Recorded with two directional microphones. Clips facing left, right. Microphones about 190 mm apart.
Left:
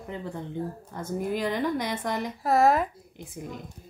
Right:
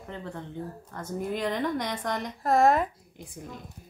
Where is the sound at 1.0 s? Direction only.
5° left (ahead or behind).